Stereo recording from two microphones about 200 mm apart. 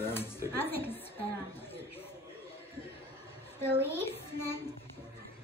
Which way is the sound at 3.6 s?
10° left (ahead or behind).